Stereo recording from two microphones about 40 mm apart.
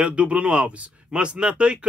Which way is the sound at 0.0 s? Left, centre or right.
Right.